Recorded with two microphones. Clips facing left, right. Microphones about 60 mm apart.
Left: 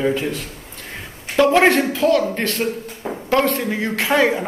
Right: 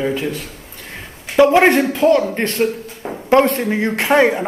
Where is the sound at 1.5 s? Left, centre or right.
Centre.